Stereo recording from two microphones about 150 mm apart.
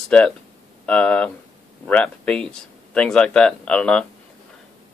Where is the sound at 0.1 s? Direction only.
5° left (ahead or behind).